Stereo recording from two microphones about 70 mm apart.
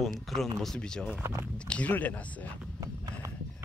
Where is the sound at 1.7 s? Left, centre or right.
Left.